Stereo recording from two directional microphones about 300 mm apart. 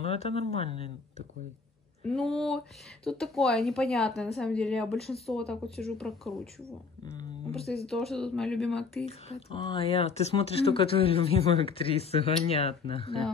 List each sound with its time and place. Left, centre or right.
0.0 s speech: centre
2.0 s speech: centre
7.8 s speech: centre
9.0 s speech: centre